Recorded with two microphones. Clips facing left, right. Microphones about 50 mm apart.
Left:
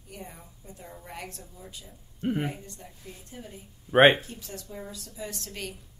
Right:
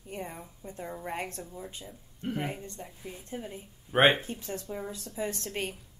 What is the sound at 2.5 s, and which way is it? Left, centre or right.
A woman's voice, right.